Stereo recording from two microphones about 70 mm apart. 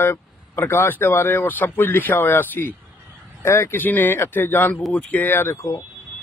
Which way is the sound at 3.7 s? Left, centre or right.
Left.